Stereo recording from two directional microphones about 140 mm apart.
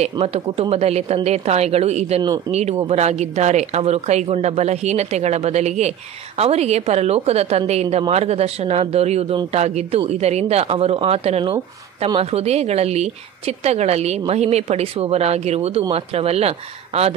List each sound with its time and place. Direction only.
0.0 s speech: 45° right (ahead or behind)